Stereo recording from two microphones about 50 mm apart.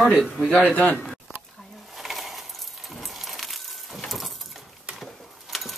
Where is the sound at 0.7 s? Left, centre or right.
Left.